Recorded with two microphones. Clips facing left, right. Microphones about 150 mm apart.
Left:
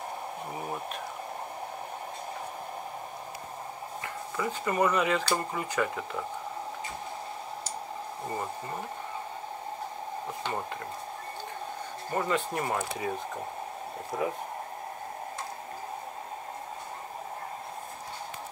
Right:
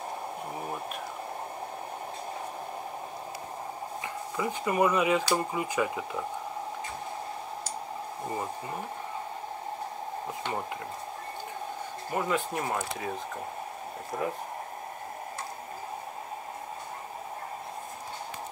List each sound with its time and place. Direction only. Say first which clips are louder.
4.0 s speech: even; 15° right (ahead or behind)
12.1 s speech: even; 5° right (ahead or behind)
14.1 s speech: left 1 dB; centre (ahead or behind)